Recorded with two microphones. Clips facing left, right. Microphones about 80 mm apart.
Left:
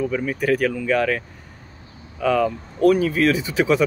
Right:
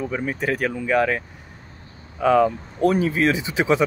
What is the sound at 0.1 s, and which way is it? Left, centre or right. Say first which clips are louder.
Speech: left 3 dB; right.